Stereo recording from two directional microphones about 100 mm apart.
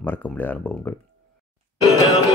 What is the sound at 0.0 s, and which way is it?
Speech, 20° left (ahead or behind).